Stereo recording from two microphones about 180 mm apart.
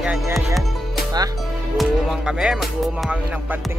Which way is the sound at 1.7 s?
Centre (ahead or behind).